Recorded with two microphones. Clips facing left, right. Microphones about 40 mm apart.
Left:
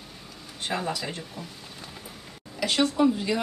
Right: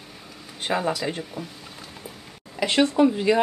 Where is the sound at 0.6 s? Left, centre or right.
Right.